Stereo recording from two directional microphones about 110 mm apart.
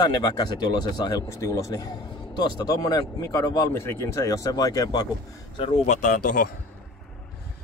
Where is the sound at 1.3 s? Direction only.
25° left (ahead or behind).